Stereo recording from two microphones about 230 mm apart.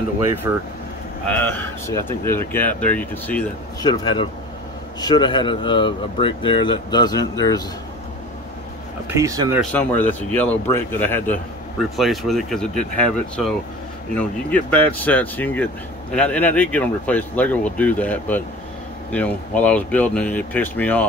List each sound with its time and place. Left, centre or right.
0.5 s speech: centre
1.9 s speech: centre
3.8 s speech: centre
9.1 s speech: centre
9.7 s speech: centre